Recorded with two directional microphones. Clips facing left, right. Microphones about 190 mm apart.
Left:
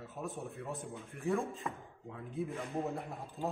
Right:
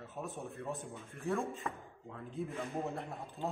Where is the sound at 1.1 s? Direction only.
15° left (ahead or behind).